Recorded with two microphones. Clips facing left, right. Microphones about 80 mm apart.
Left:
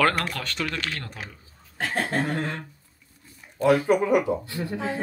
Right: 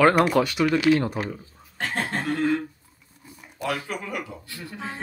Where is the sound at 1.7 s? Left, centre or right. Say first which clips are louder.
Left 2 dB; centre.